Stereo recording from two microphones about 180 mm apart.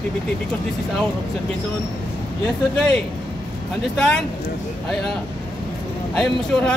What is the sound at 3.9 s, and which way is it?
Speech, 5° left (ahead or behind).